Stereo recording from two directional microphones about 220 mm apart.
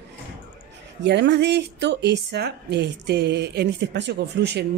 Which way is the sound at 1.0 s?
50° right (ahead or behind).